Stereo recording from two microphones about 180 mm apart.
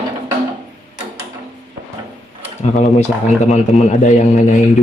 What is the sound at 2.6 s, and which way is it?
A man's voice, 40° left (ahead or behind).